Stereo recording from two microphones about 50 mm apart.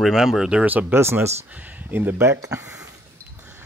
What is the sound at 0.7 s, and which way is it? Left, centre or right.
Speech, right.